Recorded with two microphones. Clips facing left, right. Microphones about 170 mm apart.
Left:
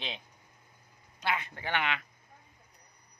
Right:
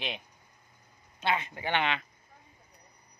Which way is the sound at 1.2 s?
25° right (ahead or behind).